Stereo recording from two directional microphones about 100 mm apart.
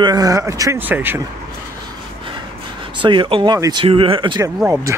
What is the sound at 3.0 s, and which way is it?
Speech, 55° right (ahead or behind).